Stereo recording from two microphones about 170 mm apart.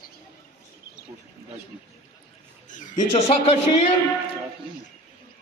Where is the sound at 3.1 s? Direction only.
35° left (ahead or behind).